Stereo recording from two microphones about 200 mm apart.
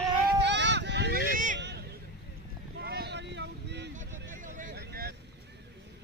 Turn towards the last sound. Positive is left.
turn(degrees=-50)  # may be behind; listen again after turning